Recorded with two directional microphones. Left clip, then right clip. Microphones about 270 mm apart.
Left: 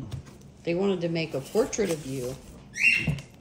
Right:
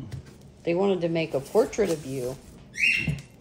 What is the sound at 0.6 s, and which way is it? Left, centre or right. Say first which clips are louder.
Speech: right 3 dB; centre.